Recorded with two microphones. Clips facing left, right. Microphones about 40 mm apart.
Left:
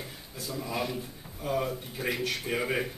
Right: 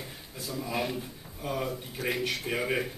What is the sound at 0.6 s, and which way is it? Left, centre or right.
Speech, centre.